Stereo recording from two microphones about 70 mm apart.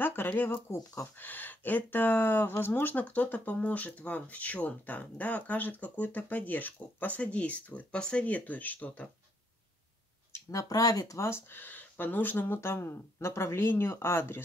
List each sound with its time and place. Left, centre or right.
0.0 s speech: left
10.3 s speech: left
11.1 s speech: left